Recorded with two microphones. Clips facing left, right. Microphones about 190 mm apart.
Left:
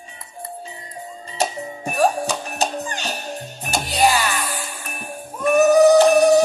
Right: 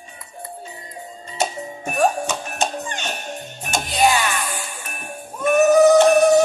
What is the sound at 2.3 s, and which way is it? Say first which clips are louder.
Music: left 1 dB; 35° left (ahead or behind).